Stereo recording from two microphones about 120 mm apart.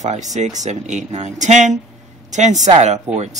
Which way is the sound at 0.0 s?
80° right.